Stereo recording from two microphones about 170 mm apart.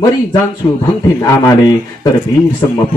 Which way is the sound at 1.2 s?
20° left (ahead or behind).